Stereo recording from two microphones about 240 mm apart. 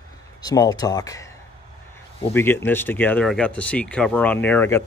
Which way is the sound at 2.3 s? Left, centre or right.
Centre.